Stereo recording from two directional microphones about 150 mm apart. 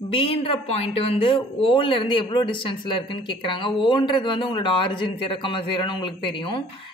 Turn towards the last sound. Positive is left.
turn(degrees=35)  # may be behind; listen again after turning